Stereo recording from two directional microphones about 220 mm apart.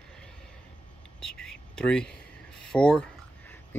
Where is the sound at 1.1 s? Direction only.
5° left (ahead or behind).